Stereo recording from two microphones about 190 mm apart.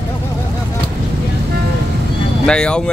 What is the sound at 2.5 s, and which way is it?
Speech, 5° left (ahead or behind).